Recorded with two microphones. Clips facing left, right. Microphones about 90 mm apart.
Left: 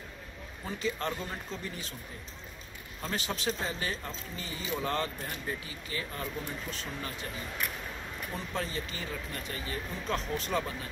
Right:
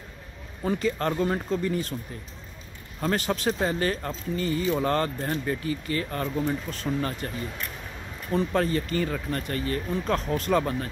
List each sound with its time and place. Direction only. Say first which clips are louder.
0.7 s speech: right 8 dB; 50° right (ahead or behind)
3.0 s speech: right 9 dB; 50° right (ahead or behind)
8.4 s speech: right 12 dB; 55° right (ahead or behind)